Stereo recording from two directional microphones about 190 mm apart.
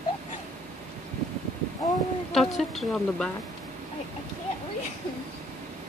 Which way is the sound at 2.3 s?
Centre (ahead or behind).